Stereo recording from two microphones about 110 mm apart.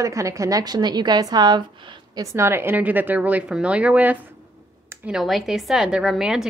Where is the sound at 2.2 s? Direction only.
20° right (ahead or behind); by 6.4 s 5° right (ahead or behind).